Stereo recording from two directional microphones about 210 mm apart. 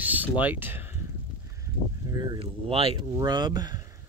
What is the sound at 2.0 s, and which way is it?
Speech, 20° right (ahead or behind).